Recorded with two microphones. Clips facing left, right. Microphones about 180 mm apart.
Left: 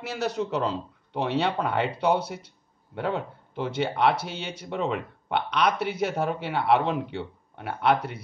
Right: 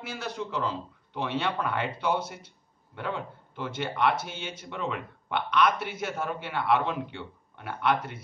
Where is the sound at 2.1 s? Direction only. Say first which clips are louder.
Left 4 dB; 65° left (ahead or behind).